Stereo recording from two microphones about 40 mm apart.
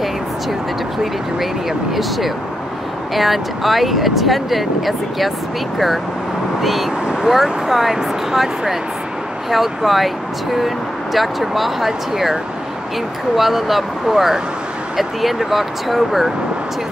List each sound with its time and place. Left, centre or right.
1.4 s speech: centre
6.6 s speech: centre
7.1 s vehicle: centre
7.3 s speech: centre
13.4 s speech: centre